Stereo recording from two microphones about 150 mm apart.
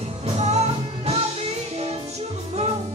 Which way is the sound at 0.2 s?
45° right (ahead or behind).